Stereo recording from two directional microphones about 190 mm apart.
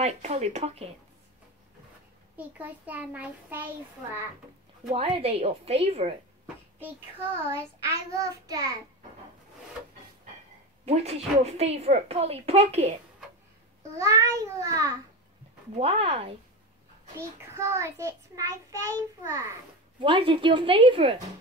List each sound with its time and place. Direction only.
0.0 s speech: 35° right (ahead or behind)
2.3 s child singing: 10° right (ahead or behind)
4.9 s speech: 30° right (ahead or behind)
7.5 s child singing: 15° right (ahead or behind)
10.9 s speech: 35° right (ahead or behind)
13.9 s child singing: 15° right (ahead or behind)
15.8 s speech: 30° right (ahead or behind)
17.2 s child singing: 15° right (ahead or behind)
20.0 s a woman's voice: 25° right (ahead or behind)